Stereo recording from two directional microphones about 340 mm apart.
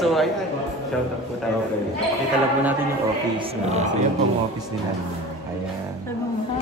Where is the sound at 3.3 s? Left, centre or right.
Centre.